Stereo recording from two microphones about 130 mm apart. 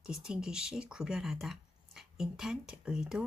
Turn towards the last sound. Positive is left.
turn(degrees=-5)  # may be behind; listen again after turning